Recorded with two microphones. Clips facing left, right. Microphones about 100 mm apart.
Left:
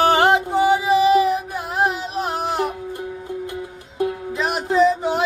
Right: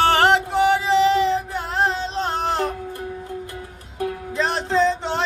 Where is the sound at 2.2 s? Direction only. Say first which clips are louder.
Left 1 dB; 5° left (ahead or behind).